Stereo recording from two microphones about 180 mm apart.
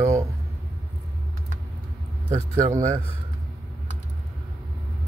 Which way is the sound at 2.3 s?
15° right (ahead or behind).